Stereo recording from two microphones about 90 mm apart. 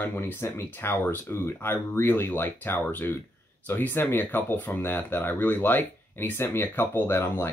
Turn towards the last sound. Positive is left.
turn(degrees=25)  # may be behind; listen again after turning